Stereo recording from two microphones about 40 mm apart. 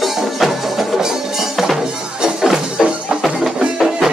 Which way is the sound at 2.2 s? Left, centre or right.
Centre.